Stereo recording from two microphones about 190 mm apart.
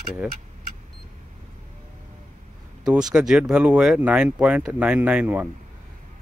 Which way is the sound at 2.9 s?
5° right (ahead or behind).